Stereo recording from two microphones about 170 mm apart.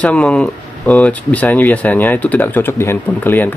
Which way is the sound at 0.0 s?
5° left (ahead or behind).